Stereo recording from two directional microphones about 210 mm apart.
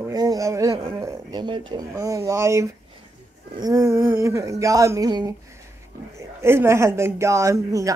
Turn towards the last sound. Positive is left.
turn(degrees=-15)  # may be behind; listen again after turning